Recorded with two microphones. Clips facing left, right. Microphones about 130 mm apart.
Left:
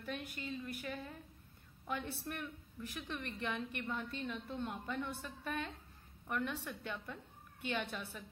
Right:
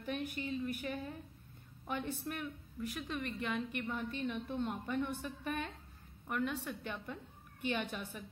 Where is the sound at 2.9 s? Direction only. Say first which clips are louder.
Right 3 dB; 5° right (ahead or behind).